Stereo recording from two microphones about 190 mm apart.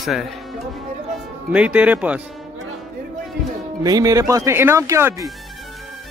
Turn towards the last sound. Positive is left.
turn(degrees=-15)  # may be behind; listen again after turning